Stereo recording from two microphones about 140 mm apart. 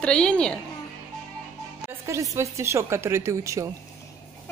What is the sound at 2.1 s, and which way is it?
A woman's voice, 20° right (ahead or behind).